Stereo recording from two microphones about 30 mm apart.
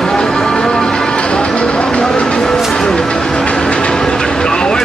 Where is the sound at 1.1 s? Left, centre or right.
Left.